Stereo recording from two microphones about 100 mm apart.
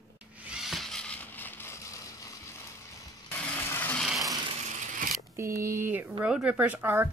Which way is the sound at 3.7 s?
20° left (ahead or behind).